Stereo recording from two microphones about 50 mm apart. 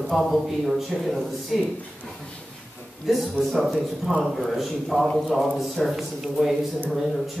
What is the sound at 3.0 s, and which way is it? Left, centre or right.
A man's voice, centre.